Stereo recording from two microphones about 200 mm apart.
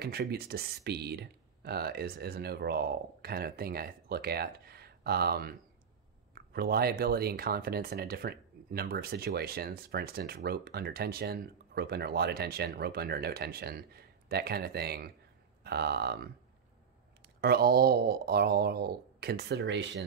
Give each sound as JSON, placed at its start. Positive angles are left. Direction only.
{"t": 0.0, "sound": "speech", "side_deg": -50}
{"t": 17.4, "sound": "speech", "side_deg": -50}